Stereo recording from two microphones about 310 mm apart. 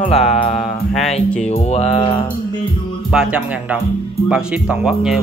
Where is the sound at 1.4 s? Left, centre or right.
Left.